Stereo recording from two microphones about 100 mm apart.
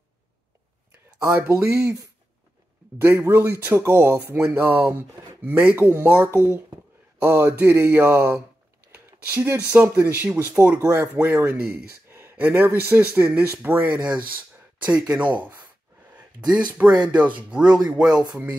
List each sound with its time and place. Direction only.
1.7 s speech: 10° right (ahead or behind)
3.0 s speech: 25° right (ahead or behind)
16.2 s a sound: 10° right (ahead or behind)
17.0 s speech: 10° right (ahead or behind)